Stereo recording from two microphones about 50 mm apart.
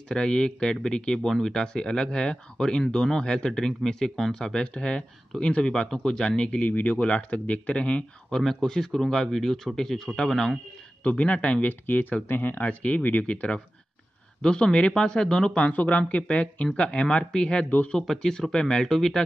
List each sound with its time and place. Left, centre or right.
0.1 s speech: centre
6.6 s speech: left
8.3 s speech: centre
11.1 s speech: left
11.8 s speech: left; by 15.6 s centre
15.6 s speech: left
17.9 s speech: centre